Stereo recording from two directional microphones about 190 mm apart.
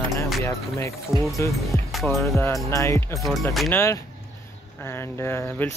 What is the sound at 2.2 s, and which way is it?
Speech, 15° left (ahead or behind).